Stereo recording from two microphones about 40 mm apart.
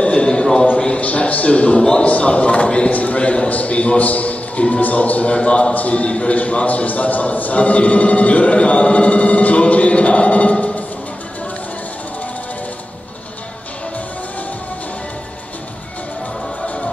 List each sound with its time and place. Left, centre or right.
0.0 s a sound: left
0.7 s a man's voice: left
16.6 s music: left